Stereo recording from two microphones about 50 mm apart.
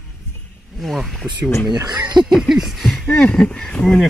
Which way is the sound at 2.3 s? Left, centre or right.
Centre.